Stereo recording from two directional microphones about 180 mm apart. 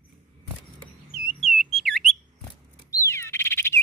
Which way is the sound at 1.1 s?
Centre (ahead or behind).